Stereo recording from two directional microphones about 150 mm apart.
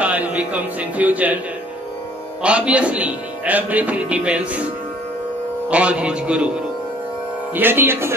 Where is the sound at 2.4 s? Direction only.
10° right (ahead or behind).